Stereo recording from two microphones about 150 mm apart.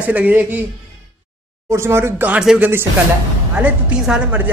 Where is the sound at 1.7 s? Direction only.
15° right (ahead or behind).